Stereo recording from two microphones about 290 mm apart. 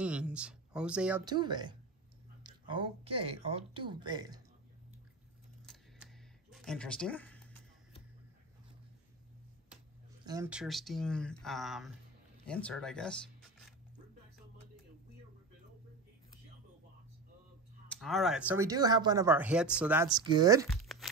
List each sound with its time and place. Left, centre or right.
0.0 s speech: centre
1.2 s speech: centre
5.7 s camera: centre
6.5 s speech: centre
10.2 s speech: centre
17.8 s speech: centre
20.7 s crumpling: centre